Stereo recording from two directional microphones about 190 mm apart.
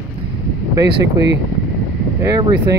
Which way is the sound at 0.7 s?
20° right (ahead or behind).